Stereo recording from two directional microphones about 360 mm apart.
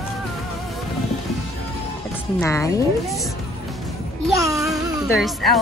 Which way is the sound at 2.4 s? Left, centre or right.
Centre.